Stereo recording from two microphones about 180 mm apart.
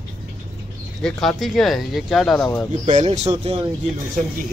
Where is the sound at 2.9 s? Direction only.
40° right (ahead or behind).